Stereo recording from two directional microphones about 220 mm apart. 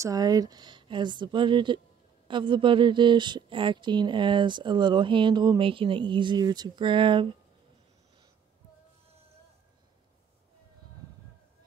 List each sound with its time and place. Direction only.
0.0 s a woman's voice: 15° right (ahead or behind)